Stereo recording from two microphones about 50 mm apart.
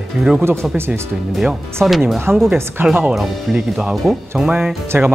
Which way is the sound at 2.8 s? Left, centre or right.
Right.